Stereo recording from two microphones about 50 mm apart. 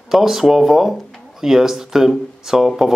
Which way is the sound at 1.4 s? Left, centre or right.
Centre.